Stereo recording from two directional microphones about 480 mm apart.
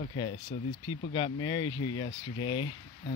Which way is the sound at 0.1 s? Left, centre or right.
Centre.